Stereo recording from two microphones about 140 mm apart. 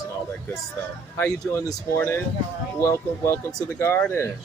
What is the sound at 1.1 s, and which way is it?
Speech, 20° left (ahead or behind).